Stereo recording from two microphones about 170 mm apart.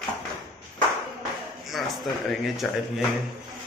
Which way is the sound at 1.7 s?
Centre (ahead or behind).